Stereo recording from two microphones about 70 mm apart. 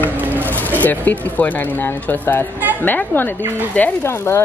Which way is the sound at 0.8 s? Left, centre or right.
Left.